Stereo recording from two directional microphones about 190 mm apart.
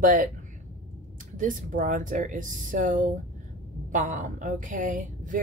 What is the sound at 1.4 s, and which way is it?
Speech, 45° right (ahead or behind).